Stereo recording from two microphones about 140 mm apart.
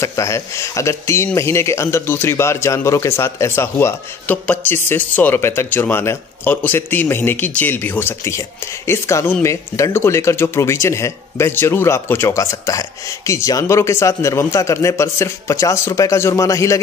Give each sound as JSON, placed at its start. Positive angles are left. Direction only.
{"t": 0.0, "sound": "speech", "side_deg": 20}